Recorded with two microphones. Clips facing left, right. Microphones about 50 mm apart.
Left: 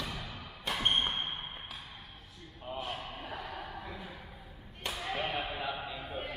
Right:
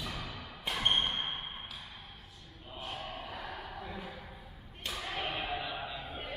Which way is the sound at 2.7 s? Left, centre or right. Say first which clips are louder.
Left 8 dB; left.